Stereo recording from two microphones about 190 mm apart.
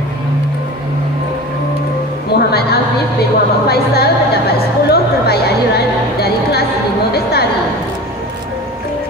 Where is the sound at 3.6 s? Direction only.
55° left (ahead or behind).